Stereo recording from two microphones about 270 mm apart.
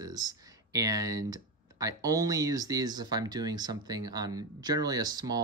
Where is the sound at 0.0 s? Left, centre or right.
Centre.